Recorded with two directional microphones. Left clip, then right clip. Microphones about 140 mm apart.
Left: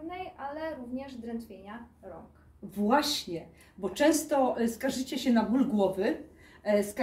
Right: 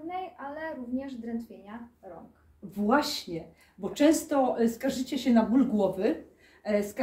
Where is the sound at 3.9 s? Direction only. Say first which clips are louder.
Right 1 dB; 10° right (ahead or behind).